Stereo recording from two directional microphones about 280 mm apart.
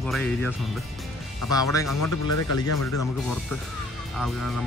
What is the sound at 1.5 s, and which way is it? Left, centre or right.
Speech, centre.